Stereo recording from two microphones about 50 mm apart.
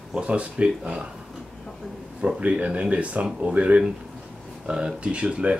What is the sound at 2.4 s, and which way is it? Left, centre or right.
Speech, right.